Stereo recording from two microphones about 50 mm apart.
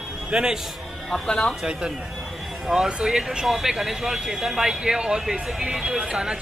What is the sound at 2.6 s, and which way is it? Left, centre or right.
Speech, centre.